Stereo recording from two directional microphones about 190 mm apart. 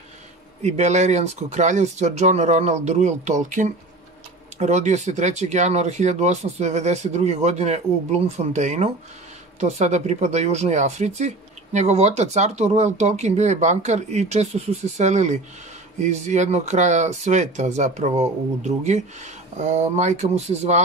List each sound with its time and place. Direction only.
0.6 s speech: 35° right (ahead or behind)